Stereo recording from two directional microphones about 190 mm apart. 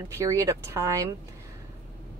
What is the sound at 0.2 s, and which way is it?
Speech, 15° right (ahead or behind).